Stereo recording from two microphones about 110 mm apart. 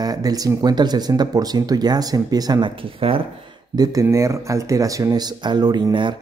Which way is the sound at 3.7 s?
35° right (ahead or behind).